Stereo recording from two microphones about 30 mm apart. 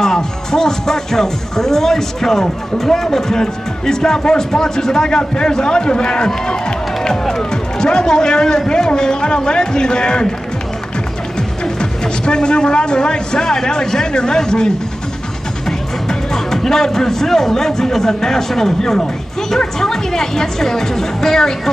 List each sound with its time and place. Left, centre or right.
0.0 s a man's voice: centre
7.8 s a man's voice: left
11.6 s a man's voice: left
16.1 s speech: centre